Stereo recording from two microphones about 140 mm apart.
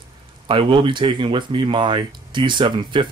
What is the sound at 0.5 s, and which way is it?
Speech, 35° right (ahead or behind).